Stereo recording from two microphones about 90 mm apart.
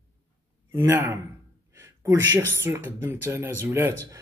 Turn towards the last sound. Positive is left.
turn(degrees=-25)  # may be behind; listen again after turning